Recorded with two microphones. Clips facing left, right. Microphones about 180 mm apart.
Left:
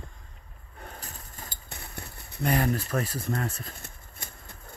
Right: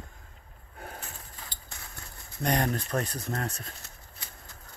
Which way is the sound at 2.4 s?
5° left (ahead or behind).